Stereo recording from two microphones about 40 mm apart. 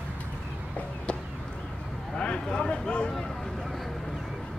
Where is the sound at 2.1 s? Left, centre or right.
Left.